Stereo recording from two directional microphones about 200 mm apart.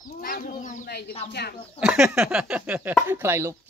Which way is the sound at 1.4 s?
55° left (ahead or behind).